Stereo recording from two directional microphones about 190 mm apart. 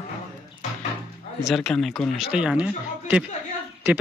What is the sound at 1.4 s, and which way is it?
A man's voice, centre (ahead or behind).